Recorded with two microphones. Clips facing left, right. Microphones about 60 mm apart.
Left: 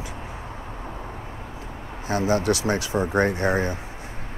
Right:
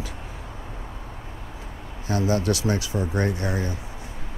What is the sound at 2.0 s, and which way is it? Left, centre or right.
Speech, left.